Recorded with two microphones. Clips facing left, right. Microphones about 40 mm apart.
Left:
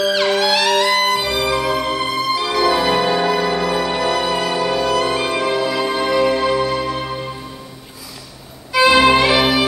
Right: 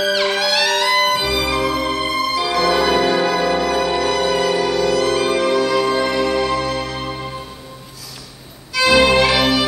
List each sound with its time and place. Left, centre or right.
0.0 s music: centre
8.7 s music: centre